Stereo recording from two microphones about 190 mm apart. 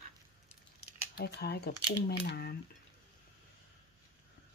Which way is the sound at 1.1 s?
60° left (ahead or behind).